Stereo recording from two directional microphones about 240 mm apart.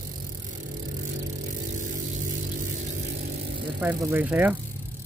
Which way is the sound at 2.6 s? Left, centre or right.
Right.